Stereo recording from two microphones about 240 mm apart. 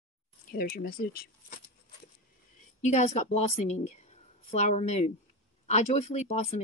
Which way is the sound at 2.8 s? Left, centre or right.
Left.